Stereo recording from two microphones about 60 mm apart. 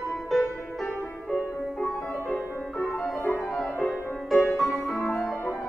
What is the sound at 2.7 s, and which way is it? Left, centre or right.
Music, left.